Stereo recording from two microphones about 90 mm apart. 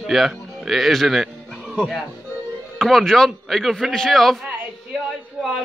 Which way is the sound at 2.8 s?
5° left (ahead or behind).